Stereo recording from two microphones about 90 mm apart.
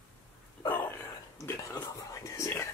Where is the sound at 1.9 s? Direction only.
35° left (ahead or behind).